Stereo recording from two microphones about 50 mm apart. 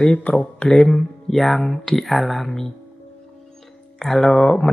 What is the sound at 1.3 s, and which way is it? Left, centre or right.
Speech, centre.